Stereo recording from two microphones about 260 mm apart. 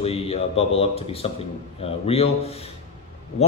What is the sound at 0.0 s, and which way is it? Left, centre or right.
A man's voice, left.